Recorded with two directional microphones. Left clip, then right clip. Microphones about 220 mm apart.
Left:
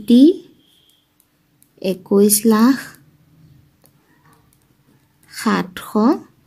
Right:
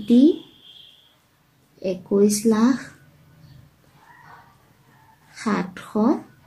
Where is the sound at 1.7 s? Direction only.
45° left (ahead or behind).